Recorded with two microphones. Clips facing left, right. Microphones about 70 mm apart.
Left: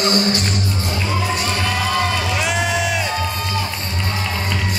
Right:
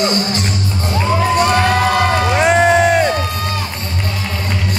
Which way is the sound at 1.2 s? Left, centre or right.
Right.